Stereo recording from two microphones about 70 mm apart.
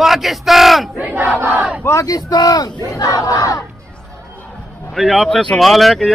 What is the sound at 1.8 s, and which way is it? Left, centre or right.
A man's voice, left.